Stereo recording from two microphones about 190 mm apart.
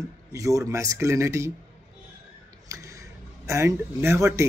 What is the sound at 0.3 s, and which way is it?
Speech, 15° right (ahead or behind).